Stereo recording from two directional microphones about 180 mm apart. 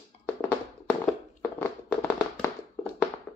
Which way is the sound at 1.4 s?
10° left (ahead or behind).